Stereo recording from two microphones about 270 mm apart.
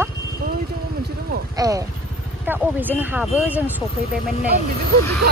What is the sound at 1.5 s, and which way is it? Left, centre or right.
Speech, centre.